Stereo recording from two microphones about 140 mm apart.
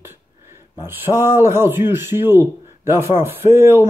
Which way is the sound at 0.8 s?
15° right (ahead or behind).